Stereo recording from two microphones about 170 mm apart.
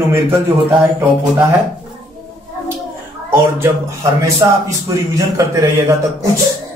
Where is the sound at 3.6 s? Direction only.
15° right (ahead or behind).